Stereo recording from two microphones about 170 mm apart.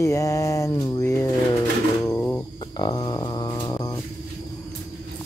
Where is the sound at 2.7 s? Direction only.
25° left (ahead or behind).